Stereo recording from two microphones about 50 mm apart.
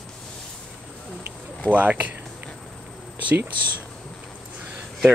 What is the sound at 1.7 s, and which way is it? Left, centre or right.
Speech, right.